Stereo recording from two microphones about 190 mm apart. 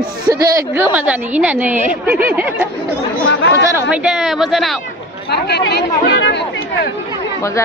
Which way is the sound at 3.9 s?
5° right (ahead or behind).